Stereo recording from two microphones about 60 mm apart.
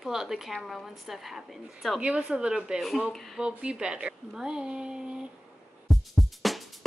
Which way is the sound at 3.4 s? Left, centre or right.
Centre.